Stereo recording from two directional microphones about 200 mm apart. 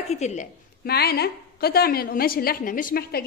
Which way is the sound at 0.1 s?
35° left (ahead or behind).